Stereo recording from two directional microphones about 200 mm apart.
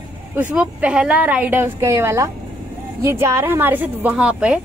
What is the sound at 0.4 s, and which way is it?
A woman's voice, 5° right (ahead or behind).